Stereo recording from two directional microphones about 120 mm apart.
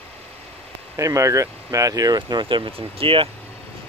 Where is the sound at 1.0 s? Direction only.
25° right (ahead or behind).